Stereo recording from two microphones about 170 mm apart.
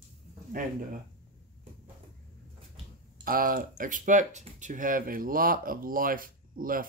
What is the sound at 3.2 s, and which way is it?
Speech, 55° right (ahead or behind).